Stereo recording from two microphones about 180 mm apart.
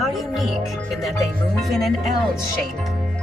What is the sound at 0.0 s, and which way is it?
Speech, centre (ahead or behind).